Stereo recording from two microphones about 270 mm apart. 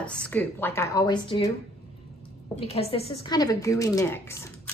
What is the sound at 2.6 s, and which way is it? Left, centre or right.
A woman's voice, left.